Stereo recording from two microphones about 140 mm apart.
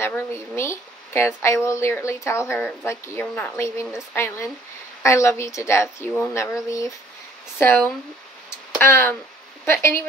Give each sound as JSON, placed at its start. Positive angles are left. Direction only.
{"t": 0.0, "sound": "speech", "side_deg": 20}
{"t": 8.5, "sound": "a sound", "side_deg": 15}
{"t": 9.7, "sound": "speech", "side_deg": 20}